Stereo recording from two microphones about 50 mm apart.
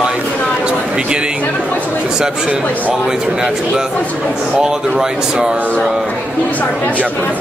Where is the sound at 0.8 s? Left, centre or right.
Centre.